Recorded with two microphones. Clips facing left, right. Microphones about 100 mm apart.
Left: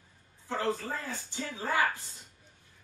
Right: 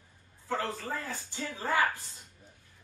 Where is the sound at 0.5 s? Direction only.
20° left (ahead or behind).